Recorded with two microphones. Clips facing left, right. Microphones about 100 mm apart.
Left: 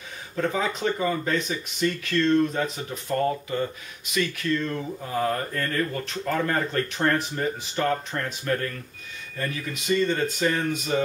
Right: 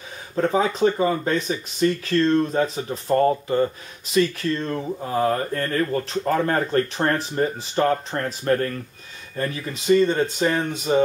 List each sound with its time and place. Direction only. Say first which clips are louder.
0.4 s speech: right 6 dB; 30° right (ahead or behind)